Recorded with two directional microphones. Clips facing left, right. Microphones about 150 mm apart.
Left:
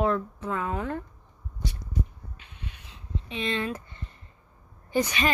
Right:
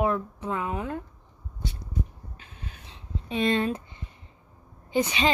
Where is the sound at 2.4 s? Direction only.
40° right (ahead or behind).